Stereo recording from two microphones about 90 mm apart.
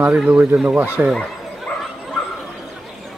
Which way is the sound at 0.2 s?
20° right (ahead or behind).